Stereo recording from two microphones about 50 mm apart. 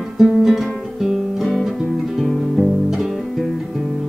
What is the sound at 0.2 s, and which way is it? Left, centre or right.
Music, centre.